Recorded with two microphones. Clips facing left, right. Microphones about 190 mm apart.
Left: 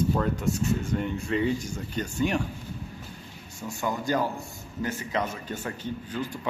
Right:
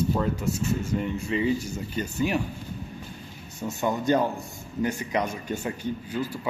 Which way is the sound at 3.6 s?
20° right (ahead or behind).